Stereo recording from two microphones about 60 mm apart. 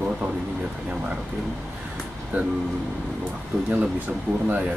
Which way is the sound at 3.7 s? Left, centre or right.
Right.